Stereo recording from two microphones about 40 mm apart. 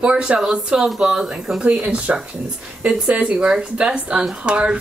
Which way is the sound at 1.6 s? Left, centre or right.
Right.